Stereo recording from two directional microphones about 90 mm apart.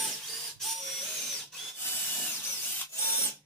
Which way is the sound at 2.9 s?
25° left (ahead or behind).